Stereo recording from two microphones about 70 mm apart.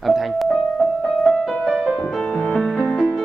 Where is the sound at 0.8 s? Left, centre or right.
Centre.